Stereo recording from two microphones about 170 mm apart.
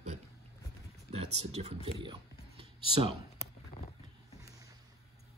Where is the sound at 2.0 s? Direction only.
35° right (ahead or behind).